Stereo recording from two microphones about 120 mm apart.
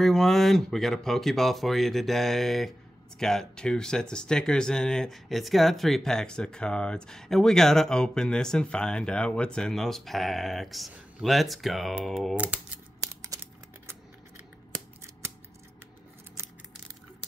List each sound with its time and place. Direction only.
0.0 s speech: centre (ahead or behind)
12.4 s speech: 10° right (ahead or behind)